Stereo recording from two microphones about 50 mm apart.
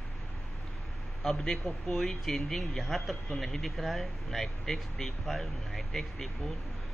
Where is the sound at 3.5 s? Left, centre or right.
Centre.